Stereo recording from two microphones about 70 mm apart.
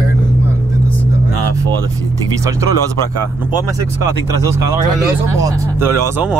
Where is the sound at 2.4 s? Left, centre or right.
Right.